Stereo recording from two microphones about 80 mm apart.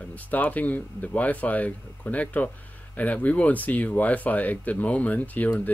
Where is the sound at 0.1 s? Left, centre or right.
Centre.